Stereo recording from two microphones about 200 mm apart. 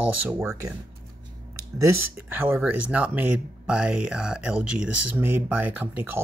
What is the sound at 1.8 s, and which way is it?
Speech, 10° right (ahead or behind).